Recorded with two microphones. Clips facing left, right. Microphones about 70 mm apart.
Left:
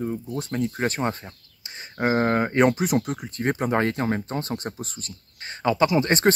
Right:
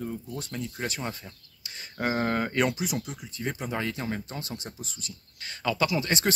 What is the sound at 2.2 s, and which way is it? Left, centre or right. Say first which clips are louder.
Speech: left 6 dB; left.